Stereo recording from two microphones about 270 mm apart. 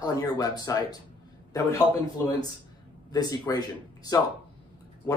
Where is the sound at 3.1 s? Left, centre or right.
Centre.